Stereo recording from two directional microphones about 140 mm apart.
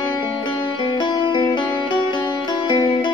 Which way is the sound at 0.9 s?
35° left (ahead or behind).